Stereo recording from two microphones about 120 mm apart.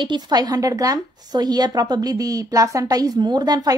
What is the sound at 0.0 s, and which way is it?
A woman's voice, 35° right (ahead or behind).